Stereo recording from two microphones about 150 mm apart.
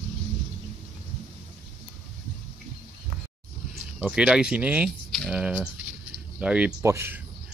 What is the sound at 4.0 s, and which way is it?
Speech, 5° right (ahead or behind).